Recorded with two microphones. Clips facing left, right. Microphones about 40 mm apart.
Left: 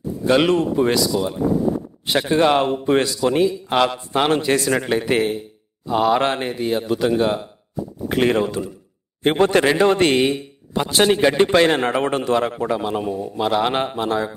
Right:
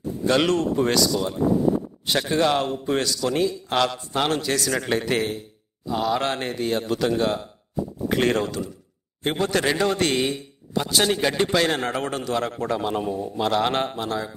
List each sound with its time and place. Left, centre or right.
0.2 s a man's voice: centre
5.9 s a man's voice: left
6.4 s speech: centre
9.2 s a man's voice: left; by 14.0 s centre
14.0 s a man's voice: left